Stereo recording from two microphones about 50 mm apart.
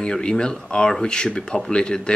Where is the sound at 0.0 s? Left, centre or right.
Centre.